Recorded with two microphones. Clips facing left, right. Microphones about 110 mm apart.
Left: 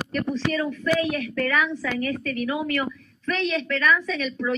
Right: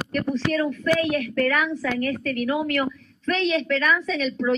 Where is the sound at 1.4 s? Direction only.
5° right (ahead or behind).